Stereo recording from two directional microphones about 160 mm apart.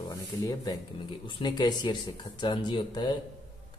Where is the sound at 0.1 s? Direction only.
20° left (ahead or behind).